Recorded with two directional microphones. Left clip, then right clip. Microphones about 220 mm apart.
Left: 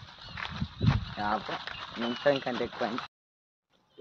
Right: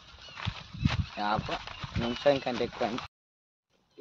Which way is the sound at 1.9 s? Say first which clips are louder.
Right 1 dB; 5° right (ahead or behind).